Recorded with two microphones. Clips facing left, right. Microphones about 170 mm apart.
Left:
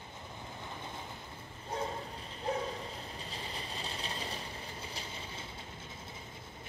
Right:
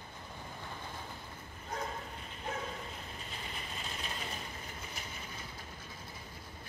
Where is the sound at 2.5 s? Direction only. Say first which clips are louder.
Left 6 dB; 35° left (ahead or behind).